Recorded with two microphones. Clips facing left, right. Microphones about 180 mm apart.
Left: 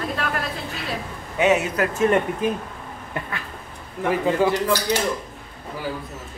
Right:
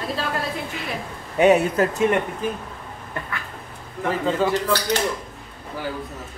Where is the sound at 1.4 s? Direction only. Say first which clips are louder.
Right 3 dB; 30° right (ahead or behind).